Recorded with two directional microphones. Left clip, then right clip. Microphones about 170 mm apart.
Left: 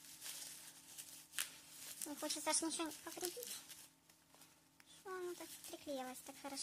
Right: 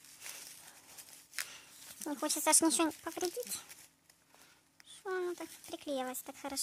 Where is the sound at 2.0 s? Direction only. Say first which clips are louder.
Right 10 dB; 40° right (ahead or behind).